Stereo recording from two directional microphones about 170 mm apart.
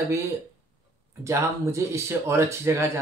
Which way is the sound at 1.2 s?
15° right (ahead or behind).